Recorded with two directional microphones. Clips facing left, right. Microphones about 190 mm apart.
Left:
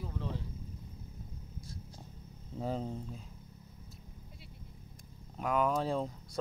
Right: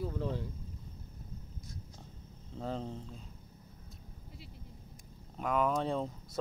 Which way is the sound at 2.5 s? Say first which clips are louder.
Left 2 dB; 5° left (ahead or behind).